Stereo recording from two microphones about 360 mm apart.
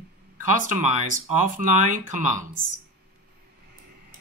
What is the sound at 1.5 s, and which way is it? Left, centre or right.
Speech, right.